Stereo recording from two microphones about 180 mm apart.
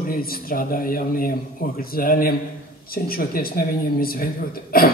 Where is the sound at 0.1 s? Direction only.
55° left (ahead or behind).